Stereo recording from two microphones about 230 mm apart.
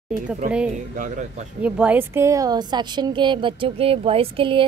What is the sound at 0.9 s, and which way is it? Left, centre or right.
Speech, right.